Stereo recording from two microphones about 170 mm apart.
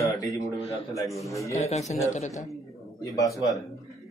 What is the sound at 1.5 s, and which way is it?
Mantra, 40° left (ahead or behind).